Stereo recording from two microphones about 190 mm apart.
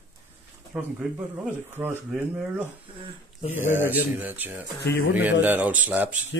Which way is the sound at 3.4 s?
35° left (ahead or behind).